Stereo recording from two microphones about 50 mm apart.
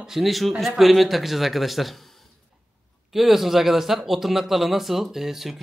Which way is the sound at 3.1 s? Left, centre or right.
Centre.